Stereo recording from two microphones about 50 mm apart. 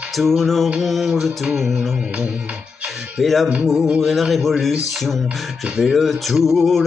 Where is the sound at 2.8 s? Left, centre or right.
Centre.